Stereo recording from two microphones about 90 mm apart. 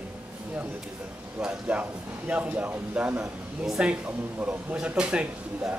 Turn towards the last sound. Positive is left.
turn(degrees=-10)  # may be behind; listen again after turning